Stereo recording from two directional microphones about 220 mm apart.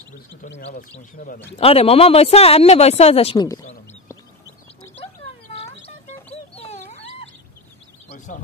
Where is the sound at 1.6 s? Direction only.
25° left (ahead or behind).